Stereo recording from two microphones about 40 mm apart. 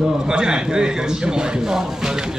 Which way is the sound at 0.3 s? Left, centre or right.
Right.